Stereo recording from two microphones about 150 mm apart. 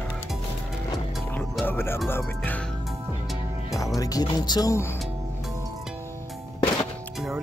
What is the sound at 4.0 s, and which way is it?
Speech, 25° left (ahead or behind).